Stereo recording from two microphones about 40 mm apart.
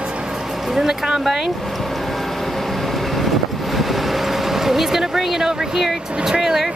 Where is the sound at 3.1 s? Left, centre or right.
Centre.